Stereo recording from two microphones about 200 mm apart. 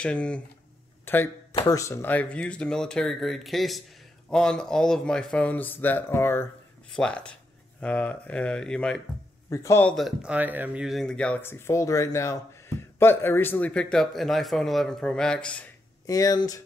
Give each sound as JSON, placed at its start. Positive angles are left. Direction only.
{"t": 0.0, "sound": "a man's voice", "side_deg": 5}
{"t": 1.0, "sound": "a sound", "side_deg": 10}
{"t": 1.7, "sound": "a man's voice", "side_deg": 15}
{"t": 9.5, "sound": "a man's voice", "side_deg": 15}
{"t": 16.1, "sound": "speech", "side_deg": 20}